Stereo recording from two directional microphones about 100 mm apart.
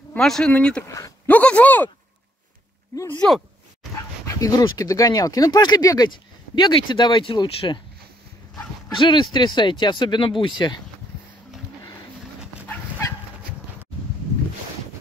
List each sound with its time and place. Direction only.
0.2 s speech: 5° left (ahead or behind)
0.8 s speech: 35° left (ahead or behind)
1.2 s speech: 15° left (ahead or behind)
3.2 s speech: centre (ahead or behind)
4.4 s speech: 35° left (ahead or behind); by 7.8 s 55° left (ahead or behind)
8.9 s speech: 50° left (ahead or behind)